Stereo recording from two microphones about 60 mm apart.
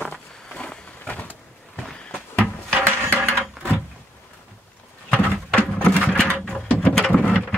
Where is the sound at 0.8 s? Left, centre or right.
Left.